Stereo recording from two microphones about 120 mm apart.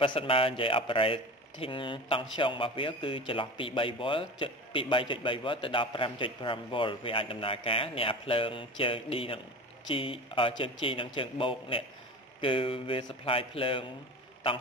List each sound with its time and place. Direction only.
0.0 s speech: 45° left (ahead or behind)